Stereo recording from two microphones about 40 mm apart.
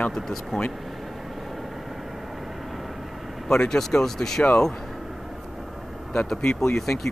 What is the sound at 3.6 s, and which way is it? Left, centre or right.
Speech, centre.